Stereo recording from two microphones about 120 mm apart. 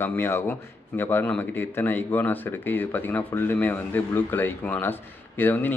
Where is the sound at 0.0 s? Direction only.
20° left (ahead or behind).